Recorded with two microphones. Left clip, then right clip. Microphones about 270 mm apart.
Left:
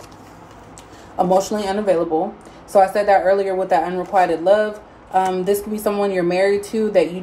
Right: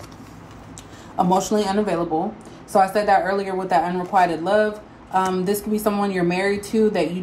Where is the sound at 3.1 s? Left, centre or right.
Centre.